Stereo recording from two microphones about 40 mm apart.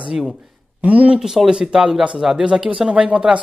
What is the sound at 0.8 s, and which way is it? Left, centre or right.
Speech, right.